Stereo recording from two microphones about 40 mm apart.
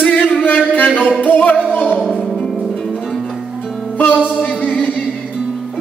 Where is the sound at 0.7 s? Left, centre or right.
Left.